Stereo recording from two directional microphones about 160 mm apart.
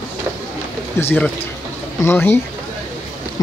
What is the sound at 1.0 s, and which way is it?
Speech, 15° left (ahead or behind).